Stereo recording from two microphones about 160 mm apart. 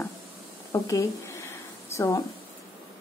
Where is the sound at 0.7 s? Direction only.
20° left (ahead or behind).